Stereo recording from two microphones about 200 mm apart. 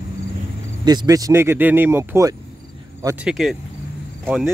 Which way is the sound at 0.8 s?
20° right (ahead or behind).